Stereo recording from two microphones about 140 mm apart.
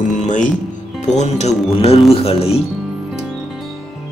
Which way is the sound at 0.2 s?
60° left (ahead or behind).